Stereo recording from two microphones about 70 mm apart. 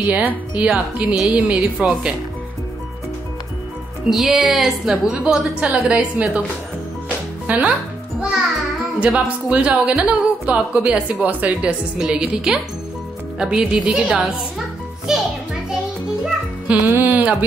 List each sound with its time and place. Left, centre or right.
0.1 s speech: centre
4.1 s a woman's voice: centre
5.2 s speech: centre
7.4 s speech: centre
8.2 s a child's voice: centre
15.1 s music: centre
16.7 s a woman's voice: centre
17.0 s carnatic music: right